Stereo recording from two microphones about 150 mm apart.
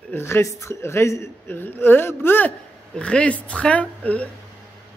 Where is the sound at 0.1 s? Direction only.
15° left (ahead or behind).